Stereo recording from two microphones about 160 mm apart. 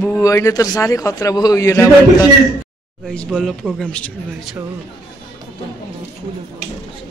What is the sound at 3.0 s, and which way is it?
Speech, centre (ahead or behind).